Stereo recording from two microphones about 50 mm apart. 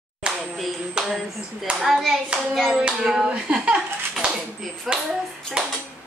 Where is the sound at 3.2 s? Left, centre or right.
Right.